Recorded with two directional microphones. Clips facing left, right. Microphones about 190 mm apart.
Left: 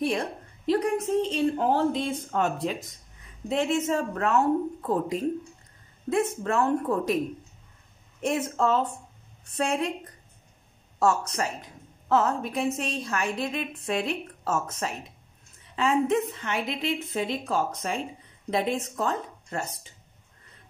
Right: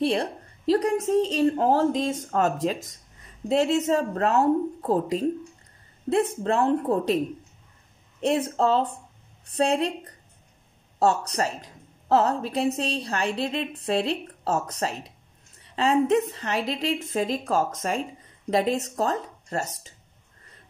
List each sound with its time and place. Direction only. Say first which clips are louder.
0.0 s a woman's voice: right 3 dB; 35° right (ahead or behind)
8.2 s a woman's voice: right 3 dB; 35° right (ahead or behind)
11.0 s a woman's voice: right 2 dB; 35° right (ahead or behind)